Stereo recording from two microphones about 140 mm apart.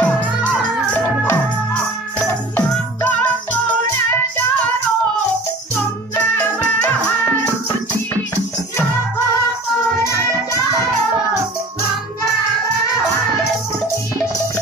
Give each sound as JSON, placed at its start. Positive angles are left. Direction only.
{"t": 0.0, "sound": "music", "side_deg": 10}